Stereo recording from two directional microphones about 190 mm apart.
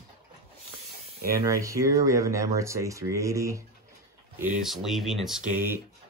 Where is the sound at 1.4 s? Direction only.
15° right (ahead or behind).